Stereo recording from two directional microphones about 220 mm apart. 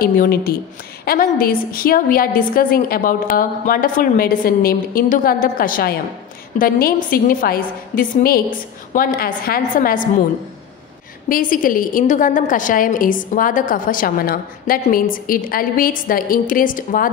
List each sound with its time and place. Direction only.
0.0 s a woman's voice: 40° left (ahead or behind)
11.2 s a woman's voice: 40° left (ahead or behind)